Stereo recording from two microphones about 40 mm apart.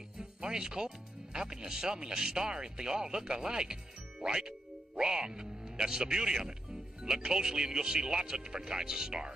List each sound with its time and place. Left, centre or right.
0.2 s speech: centre